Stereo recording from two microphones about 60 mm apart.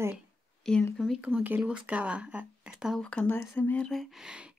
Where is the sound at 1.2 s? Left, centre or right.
Right.